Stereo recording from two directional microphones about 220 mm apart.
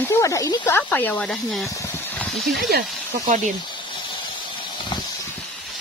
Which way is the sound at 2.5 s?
40° right (ahead or behind).